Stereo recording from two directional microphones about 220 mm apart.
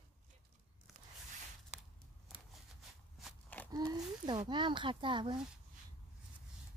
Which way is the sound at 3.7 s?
15° right (ahead or behind).